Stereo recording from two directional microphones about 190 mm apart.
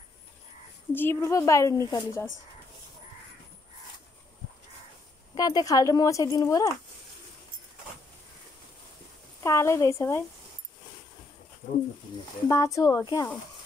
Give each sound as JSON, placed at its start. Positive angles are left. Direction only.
{"t": 0.9, "sound": "a woman's voice", "side_deg": 15}
{"t": 5.3, "sound": "speech", "side_deg": 20}
{"t": 9.4, "sound": "a woman's voice", "side_deg": 15}
{"t": 12.4, "sound": "speech", "side_deg": 20}